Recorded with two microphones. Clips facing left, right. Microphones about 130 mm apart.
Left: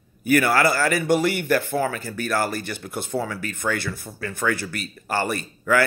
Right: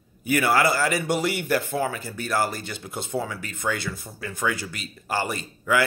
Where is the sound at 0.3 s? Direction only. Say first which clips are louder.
Left 2 dB; 20° right (ahead or behind).